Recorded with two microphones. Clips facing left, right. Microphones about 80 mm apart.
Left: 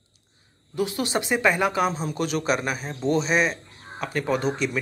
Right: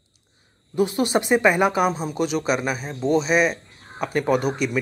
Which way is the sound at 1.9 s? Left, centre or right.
Centre.